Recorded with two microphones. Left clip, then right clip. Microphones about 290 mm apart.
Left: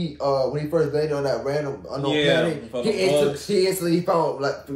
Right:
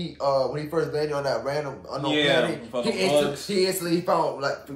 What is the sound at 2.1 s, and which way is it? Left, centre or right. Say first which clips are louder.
Speech: left 2 dB; centre.